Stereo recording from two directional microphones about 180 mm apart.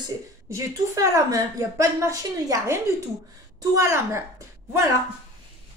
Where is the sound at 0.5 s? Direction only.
15° right (ahead or behind).